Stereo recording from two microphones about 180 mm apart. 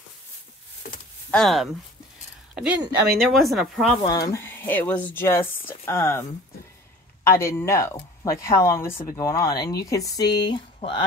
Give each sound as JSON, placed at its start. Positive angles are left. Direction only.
{"t": 1.3, "sound": "speech", "side_deg": 0}
{"t": 4.0, "sound": "speech", "side_deg": 20}
{"t": 7.2, "sound": "speech", "side_deg": 15}